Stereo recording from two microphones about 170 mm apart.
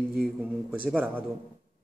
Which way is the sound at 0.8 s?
10° right (ahead or behind).